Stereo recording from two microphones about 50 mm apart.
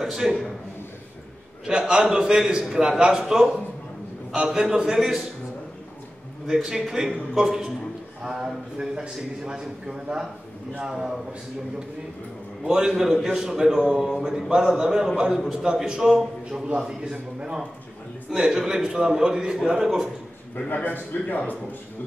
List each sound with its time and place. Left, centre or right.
0.0 s a man's voice: centre
1.7 s a man's voice: centre
6.4 s a man's voice: centre
12.6 s a man's voice: centre
20.5 s a man's voice: left